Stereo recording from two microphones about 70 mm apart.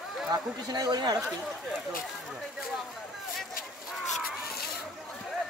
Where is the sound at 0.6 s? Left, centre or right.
Right.